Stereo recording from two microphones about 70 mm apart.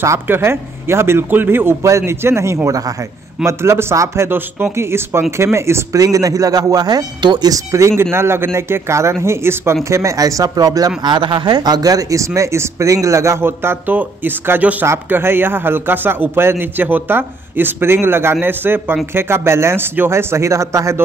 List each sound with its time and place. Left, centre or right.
0.3 s a man's voice: right
5.9 s speech: right
7.5 s speech: right
8.0 s a man's voice: right
11.0 s speech: right
12.4 s a man's voice: right